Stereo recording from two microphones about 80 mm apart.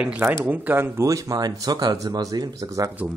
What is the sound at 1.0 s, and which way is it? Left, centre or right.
Speech, right.